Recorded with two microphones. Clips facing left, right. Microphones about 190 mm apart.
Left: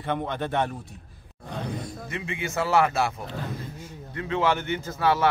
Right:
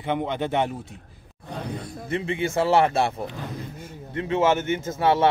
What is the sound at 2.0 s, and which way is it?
Speech, 30° right (ahead or behind).